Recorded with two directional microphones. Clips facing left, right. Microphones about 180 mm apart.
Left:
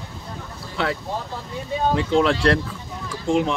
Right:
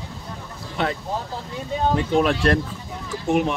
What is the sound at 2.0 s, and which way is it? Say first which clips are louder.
Speech: left 2 dB; 15° right (ahead or behind).